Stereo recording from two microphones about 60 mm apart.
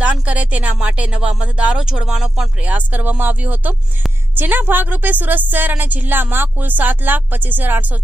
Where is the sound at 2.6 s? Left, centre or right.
Right.